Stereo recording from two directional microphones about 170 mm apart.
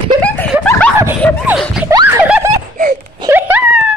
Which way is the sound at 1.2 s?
10° left (ahead or behind).